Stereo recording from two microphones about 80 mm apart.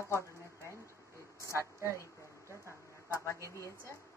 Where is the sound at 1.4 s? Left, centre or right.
Right.